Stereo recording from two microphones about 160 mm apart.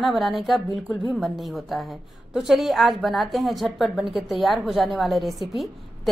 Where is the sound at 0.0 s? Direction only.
Centre (ahead or behind).